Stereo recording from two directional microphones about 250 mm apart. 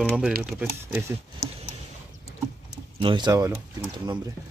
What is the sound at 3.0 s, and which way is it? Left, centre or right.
Speech, centre.